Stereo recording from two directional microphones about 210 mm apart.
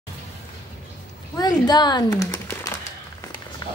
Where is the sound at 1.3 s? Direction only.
20° left (ahead or behind).